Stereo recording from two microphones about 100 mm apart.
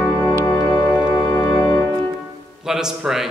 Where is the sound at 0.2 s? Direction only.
40° left (ahead or behind).